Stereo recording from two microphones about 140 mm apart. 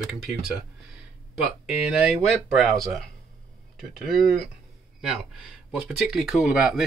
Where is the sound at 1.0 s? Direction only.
5° right (ahead or behind).